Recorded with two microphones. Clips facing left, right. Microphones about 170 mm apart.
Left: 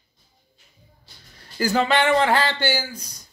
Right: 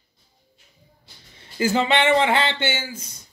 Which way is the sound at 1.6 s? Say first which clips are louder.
Even; 25° right (ahead or behind).